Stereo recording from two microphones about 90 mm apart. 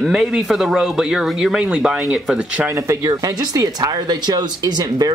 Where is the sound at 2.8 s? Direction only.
40° right (ahead or behind).